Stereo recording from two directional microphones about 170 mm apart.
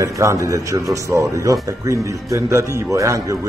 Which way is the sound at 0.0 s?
20° right (ahead or behind).